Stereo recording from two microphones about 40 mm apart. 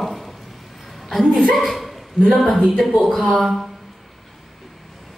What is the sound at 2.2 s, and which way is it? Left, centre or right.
Speech, left.